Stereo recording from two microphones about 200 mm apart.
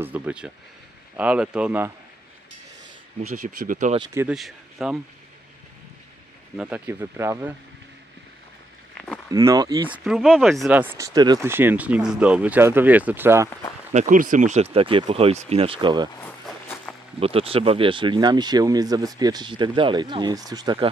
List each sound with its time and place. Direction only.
0.0 s speech: 5° right (ahead or behind)
3.3 s speech: 40° right (ahead or behind)
4.0 s speech: 15° right (ahead or behind)
4.3 s speech: centre (ahead or behind)
6.5 s speech: 5° right (ahead or behind)
8.9 s a sound: 5° left (ahead or behind)
9.3 s speech: 15° right (ahead or behind)
9.9 s speech: centre (ahead or behind)
13.5 s speech: 15° left (ahead or behind)
13.9 s speech: 40° right (ahead or behind); by 16.1 s 20° right (ahead or behind)
16.2 s walk: 10° left (ahead or behind)
17.2 s speech: 30° right (ahead or behind)